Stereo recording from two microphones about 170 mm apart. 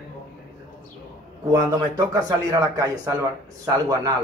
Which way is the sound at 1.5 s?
20° right (ahead or behind).